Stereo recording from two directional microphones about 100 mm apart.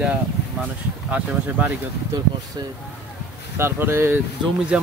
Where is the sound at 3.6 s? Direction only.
25° right (ahead or behind).